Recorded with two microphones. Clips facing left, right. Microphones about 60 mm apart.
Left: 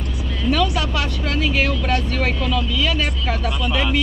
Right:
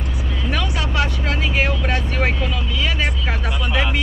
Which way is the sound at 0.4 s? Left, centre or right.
Right.